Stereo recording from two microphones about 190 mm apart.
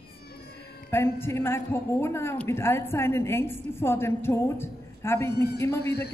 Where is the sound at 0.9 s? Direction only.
10° left (ahead or behind).